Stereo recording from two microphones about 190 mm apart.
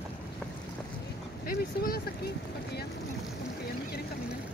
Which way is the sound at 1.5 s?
50° left (ahead or behind).